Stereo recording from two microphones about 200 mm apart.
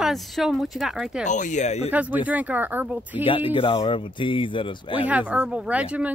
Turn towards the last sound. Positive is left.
turn(degrees=-5)  # may be behind; listen again after turning